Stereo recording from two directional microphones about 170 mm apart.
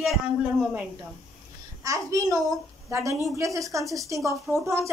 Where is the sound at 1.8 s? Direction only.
20° right (ahead or behind).